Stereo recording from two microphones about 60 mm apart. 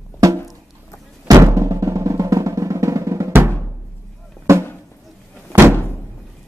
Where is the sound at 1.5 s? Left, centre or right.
Right.